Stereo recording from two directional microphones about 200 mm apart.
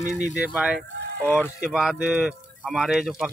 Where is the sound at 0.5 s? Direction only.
5° right (ahead or behind).